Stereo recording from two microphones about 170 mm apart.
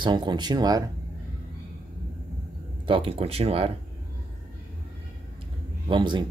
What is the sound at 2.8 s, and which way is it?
Speech, 30° right (ahead or behind).